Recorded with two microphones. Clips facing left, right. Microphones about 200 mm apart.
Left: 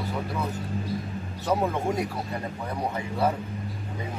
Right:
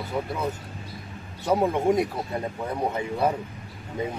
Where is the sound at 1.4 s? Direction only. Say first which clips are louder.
Right 3 dB; 15° right (ahead or behind).